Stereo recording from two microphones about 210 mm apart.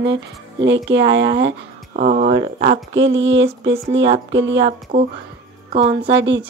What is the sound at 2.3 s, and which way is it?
Speech, 25° right (ahead or behind).